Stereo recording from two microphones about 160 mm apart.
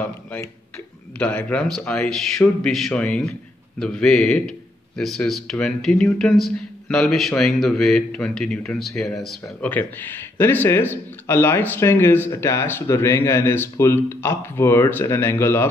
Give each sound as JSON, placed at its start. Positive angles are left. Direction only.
{"t": 1.1, "sound": "a man's voice", "side_deg": 10}